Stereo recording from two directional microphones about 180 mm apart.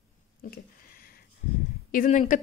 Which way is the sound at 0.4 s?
50° left (ahead or behind).